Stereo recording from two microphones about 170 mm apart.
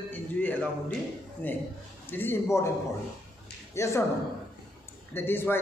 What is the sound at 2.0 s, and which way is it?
Speech, 10° left (ahead or behind).